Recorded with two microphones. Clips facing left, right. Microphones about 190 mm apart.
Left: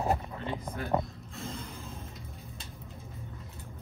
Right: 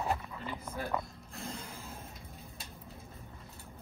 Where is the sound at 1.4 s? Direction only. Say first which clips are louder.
Left 3 dB; centre (ahead or behind).